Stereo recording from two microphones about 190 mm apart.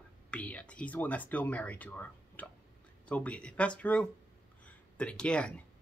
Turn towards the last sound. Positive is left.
turn(degrees=5)  # may be behind; listen again after turning